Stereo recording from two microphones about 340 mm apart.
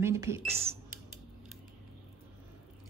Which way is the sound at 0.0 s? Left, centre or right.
Centre.